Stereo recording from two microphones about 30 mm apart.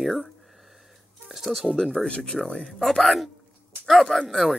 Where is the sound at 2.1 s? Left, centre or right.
Left.